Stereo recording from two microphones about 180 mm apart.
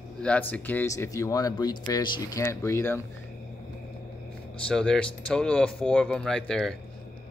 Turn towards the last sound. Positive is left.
turn(degrees=5)  # may be behind; listen again after turning